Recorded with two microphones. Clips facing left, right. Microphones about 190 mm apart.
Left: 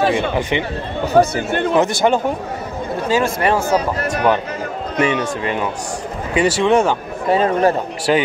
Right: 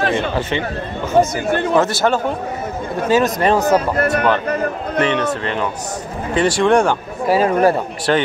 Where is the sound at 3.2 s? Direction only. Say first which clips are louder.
Right 2 dB; 20° right (ahead or behind).